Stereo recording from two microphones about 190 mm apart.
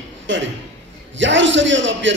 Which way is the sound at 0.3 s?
75° right (ahead or behind).